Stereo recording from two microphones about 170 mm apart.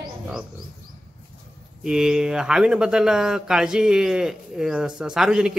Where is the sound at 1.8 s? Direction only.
5° right (ahead or behind).